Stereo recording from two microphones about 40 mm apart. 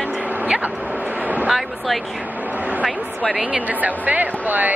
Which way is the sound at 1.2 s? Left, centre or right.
Right.